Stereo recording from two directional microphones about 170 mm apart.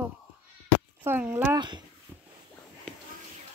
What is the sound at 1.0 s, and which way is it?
Speech, 10° right (ahead or behind).